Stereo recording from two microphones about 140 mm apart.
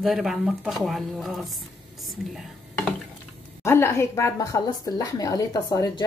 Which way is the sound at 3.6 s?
20° left (ahead or behind).